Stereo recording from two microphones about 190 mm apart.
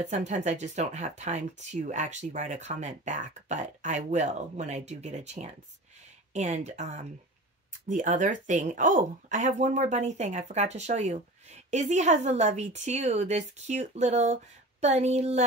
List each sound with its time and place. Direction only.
0.0 s speech: 35° right (ahead or behind)